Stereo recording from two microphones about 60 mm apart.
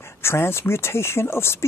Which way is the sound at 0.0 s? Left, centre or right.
Left.